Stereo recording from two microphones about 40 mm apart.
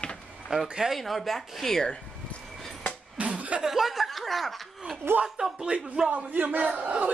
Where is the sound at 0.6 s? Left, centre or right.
Centre.